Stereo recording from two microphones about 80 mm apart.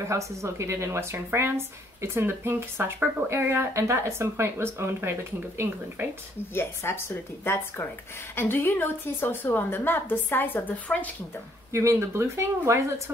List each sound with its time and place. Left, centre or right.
0.0 s speech: right
6.5 s a woman's voice: left
11.7 s speech: right